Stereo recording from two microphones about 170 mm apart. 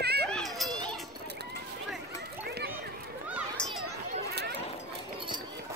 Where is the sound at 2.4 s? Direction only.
70° right (ahead or behind).